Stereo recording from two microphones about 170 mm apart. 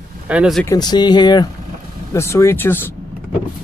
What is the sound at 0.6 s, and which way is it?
Speech, 20° left (ahead or behind).